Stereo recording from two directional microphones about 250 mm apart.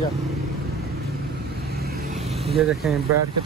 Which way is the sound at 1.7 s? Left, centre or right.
Right.